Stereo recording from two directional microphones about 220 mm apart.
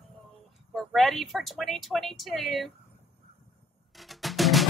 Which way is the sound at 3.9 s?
Centre (ahead or behind).